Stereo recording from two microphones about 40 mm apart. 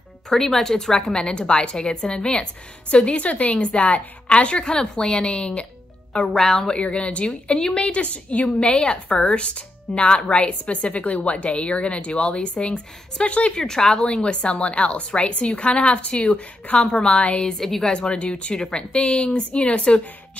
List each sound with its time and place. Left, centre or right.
0.3 s a woman's voice: centre; by 5.7 s left
6.3 s a woman's voice: centre
6.7 s speech: left
7.9 s a woman's voice: left
13.6 s speech: centre
17.6 s a woman's voice: centre
17.9 s speech: left